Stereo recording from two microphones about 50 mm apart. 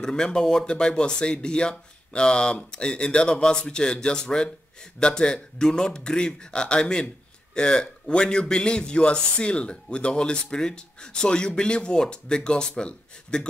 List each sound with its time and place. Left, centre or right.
0.0 s a man's voice: centre